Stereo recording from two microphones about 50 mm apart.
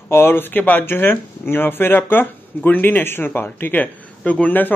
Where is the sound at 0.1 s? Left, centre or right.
Left.